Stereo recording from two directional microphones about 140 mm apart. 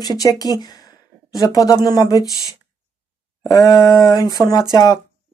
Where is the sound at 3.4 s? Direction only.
25° left (ahead or behind).